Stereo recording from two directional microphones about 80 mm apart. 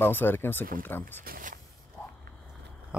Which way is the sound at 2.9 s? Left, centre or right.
Centre.